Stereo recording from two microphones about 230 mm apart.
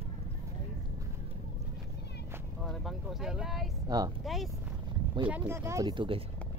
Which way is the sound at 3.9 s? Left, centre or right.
Centre.